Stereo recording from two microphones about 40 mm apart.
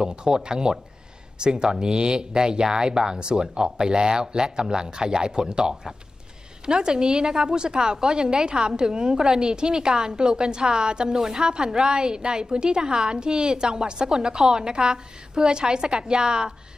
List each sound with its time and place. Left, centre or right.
0.0 s a woman's voice: right
11.1 s a woman's voice: centre
11.4 s a woman's voice: centre